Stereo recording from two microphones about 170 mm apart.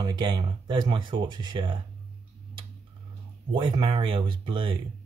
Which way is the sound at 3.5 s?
30° right (ahead or behind).